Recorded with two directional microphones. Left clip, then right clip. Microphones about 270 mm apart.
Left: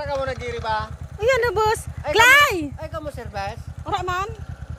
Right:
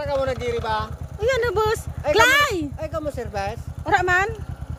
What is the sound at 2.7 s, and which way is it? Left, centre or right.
Speech, right.